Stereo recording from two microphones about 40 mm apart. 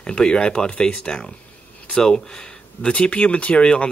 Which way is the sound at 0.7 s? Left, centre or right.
Left.